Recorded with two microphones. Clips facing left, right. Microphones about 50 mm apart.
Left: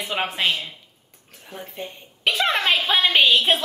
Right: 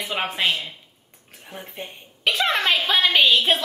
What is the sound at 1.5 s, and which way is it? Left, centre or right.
Speech, right.